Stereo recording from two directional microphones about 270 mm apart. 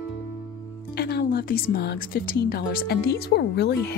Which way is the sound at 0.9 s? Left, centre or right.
Left.